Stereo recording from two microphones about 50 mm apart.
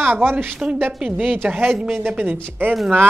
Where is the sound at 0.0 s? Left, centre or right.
Right.